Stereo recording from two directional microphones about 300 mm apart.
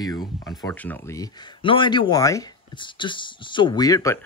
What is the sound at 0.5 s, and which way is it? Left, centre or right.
Speech, centre.